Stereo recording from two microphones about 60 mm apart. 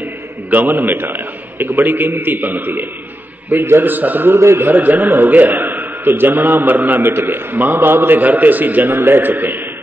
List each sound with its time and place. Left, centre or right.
0.5 s a man's voice: right
4.4 s a man's voice: right
4.6 s a man's voice: right